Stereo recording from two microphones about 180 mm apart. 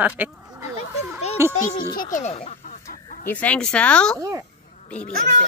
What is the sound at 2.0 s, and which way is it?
Speech, 45° left (ahead or behind).